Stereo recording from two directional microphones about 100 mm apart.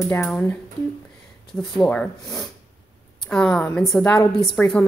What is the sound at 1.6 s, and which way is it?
A woman's voice, 10° left (ahead or behind).